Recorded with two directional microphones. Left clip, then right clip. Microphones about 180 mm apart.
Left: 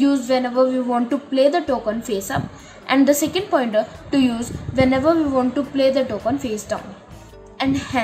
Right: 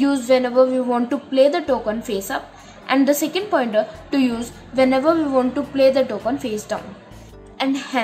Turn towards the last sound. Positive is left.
turn(degrees=-5)  # may be behind; listen again after turning